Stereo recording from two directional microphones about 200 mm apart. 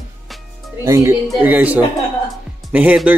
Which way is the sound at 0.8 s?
15° right (ahead or behind).